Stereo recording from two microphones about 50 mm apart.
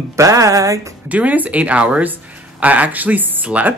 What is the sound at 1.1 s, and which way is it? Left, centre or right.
Speech, right.